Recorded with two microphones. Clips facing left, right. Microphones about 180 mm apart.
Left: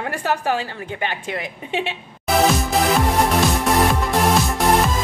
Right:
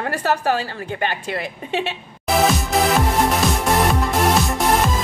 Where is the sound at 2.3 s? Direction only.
Centre (ahead or behind).